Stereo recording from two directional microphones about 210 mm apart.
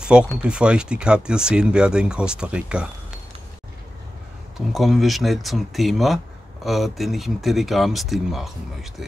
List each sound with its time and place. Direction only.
0.0 s speech: 5° right (ahead or behind)
4.6 s speech: centre (ahead or behind)